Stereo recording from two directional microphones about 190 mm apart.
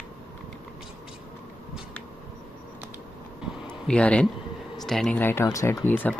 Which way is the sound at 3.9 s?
5° left (ahead or behind).